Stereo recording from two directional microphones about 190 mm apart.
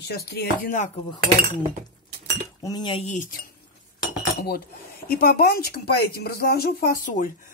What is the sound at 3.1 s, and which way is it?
Speech, 40° left (ahead or behind).